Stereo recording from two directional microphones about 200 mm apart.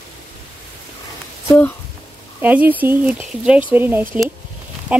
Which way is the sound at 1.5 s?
10° left (ahead or behind).